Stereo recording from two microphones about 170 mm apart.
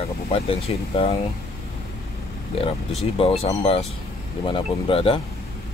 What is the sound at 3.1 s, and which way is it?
Speech, 35° left (ahead or behind).